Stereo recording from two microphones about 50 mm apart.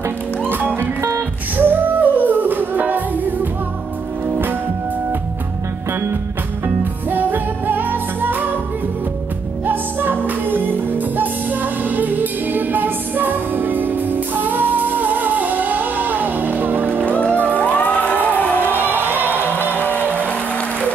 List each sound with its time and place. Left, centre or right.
0.5 s music: right
7.1 s music: right
9.7 s music: right
17.1 s music: left
18.6 s music: right
19.7 s music: left